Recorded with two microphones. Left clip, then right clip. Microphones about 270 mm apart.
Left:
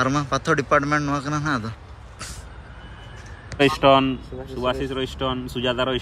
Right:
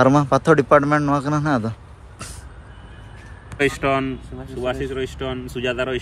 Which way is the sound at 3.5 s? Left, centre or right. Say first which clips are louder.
Left 4 dB; left.